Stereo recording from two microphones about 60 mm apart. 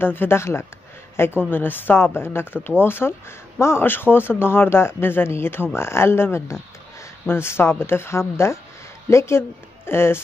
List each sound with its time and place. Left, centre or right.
0.0 s speech: left
1.5 s speech: left